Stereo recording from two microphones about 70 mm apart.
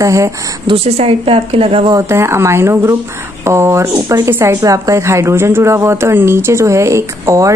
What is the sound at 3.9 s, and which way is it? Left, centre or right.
Speech, right.